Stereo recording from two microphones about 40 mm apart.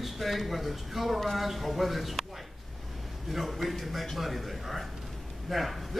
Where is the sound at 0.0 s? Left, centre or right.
Centre.